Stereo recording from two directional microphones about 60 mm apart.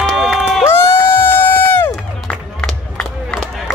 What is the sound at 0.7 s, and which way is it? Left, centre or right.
Run, left.